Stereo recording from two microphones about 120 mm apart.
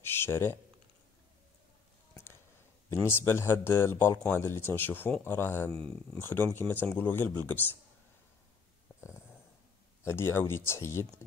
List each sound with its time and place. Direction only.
0.0 s a sound: 20° left (ahead or behind)
2.9 s speech: 20° left (ahead or behind)
10.0 s speech: 20° left (ahead or behind)